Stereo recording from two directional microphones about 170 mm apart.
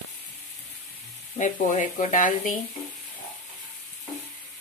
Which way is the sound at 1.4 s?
45° left (ahead or behind).